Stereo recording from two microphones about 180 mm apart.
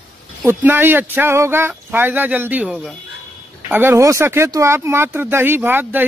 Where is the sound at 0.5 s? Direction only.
10° right (ahead or behind).